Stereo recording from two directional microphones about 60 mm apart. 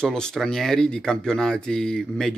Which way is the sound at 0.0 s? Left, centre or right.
Centre.